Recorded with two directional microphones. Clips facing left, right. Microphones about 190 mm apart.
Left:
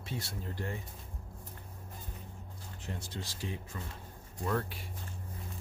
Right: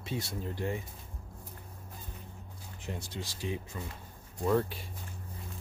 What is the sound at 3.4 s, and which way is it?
Speech, 20° right (ahead or behind).